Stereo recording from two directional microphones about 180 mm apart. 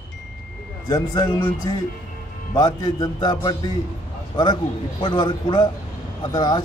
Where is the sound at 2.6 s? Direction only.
20° left (ahead or behind).